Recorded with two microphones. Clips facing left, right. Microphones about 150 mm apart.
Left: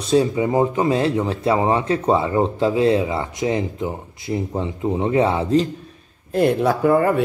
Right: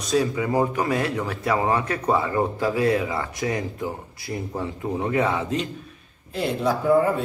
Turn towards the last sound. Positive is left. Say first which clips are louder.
# left 3 dB
turn(degrees=65)  # may be behind; listen again after turning